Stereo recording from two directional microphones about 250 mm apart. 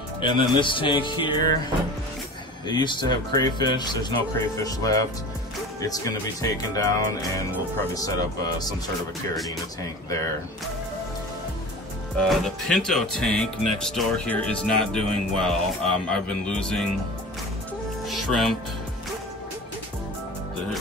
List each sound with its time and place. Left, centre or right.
0.2 s speech: centre
2.7 s speech: centre
12.2 s speech: centre
18.0 s music: centre